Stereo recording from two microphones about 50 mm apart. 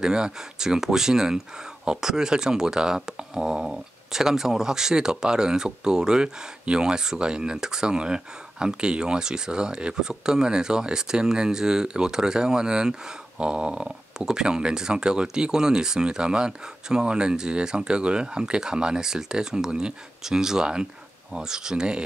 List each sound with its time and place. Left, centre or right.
0.0 s speech: centre
13.4 s dog: centre
13.8 s speech: centre